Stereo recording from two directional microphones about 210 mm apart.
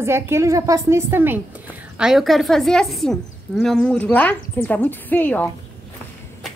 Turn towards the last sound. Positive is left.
turn(degrees=10)  # may be behind; listen again after turning